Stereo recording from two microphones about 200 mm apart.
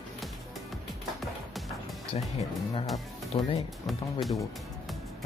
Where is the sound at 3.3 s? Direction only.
30° left (ahead or behind).